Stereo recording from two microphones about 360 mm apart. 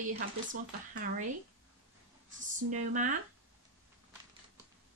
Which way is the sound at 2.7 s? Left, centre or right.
Right.